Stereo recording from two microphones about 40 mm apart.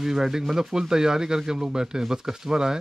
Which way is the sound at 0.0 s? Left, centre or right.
Centre.